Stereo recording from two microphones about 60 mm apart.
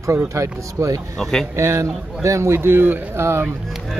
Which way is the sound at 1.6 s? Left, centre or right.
Right.